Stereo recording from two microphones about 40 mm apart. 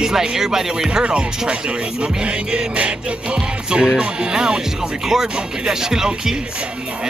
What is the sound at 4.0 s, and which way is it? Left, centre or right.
Speech, right.